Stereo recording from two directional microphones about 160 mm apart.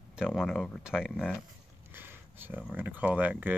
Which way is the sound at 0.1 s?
5° right (ahead or behind).